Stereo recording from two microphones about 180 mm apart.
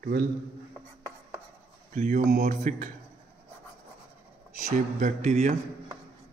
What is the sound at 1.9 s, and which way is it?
Speech, 40° right (ahead or behind).